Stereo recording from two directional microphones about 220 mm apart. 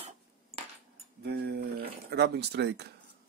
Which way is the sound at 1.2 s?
45° right (ahead or behind).